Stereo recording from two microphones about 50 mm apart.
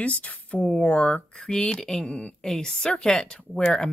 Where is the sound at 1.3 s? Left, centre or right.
Centre.